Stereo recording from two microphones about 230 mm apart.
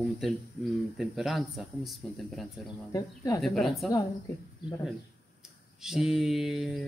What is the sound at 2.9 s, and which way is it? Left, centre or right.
Speech, centre.